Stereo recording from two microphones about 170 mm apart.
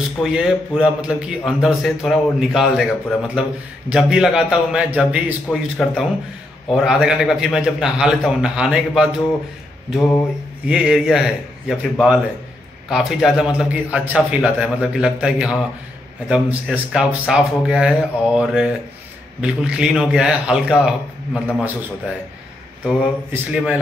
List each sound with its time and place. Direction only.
0.2 s a man's voice: 5° right (ahead or behind)
9.9 s mantra: 15° left (ahead or behind)
10.7 s a man's voice: 5° right (ahead or behind)
22.8 s a man's voice: 5° right (ahead or behind)